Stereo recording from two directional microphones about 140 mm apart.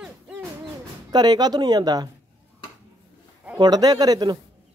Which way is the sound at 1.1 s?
30° right (ahead or behind).